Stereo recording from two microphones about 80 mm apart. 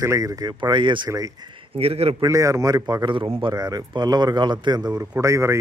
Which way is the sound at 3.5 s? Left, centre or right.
Right.